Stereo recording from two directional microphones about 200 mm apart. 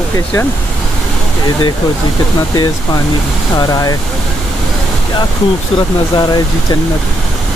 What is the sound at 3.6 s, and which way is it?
Speech, 20° left (ahead or behind).